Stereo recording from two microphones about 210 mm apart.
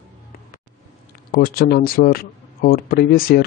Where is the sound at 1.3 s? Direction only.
45° left (ahead or behind).